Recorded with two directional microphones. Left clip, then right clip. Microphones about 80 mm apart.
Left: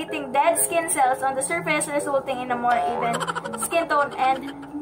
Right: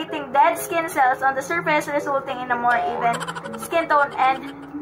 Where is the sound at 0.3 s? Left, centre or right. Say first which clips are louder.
Right 3 dB; left.